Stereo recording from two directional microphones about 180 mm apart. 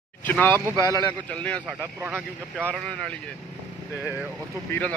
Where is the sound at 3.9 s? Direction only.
10° right (ahead or behind).